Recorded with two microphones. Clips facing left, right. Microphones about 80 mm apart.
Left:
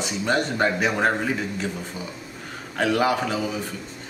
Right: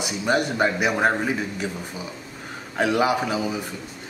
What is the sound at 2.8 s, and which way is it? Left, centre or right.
Speech, centre.